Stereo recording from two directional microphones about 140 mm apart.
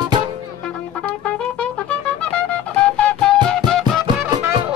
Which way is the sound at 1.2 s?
10° left (ahead or behind).